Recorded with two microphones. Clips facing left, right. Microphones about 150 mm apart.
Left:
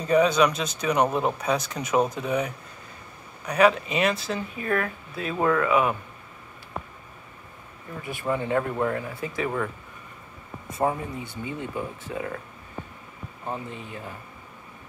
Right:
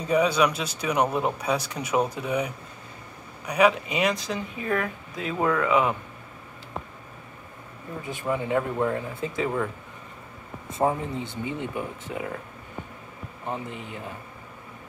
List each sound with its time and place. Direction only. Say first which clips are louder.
0.0 s speech: left 2 dB; 10° right (ahead or behind)
8.1 s speech: even; 15° right (ahead or behind)
10.7 s speech: right 1 dB; 20° right (ahead or behind)
13.5 s speech: right 1 dB; 20° right (ahead or behind)